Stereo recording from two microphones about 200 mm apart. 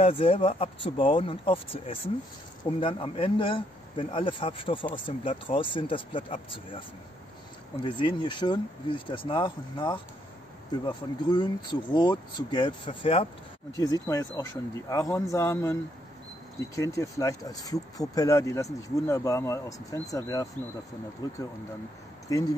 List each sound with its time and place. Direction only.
0.0 s speech: 30° left (ahead or behind)
7.8 s speech: 25° left (ahead or behind)
13.7 s speech: 15° left (ahead or behind)
22.3 s speech: 20° left (ahead or behind)